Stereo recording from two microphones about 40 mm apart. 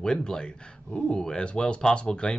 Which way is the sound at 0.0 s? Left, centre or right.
Centre.